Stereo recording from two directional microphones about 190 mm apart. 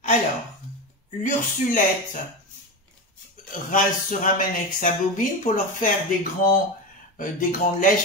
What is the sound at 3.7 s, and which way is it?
Speech, 45° left (ahead or behind).